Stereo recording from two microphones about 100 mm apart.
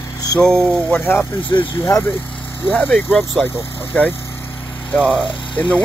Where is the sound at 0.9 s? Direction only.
20° left (ahead or behind).